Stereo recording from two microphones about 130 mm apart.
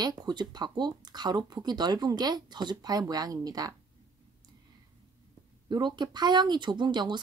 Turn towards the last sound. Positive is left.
turn(degrees=-35)  # may be behind; listen again after turning